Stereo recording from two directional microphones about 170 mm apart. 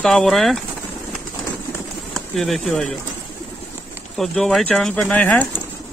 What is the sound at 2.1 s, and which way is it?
Speech, centre (ahead or behind).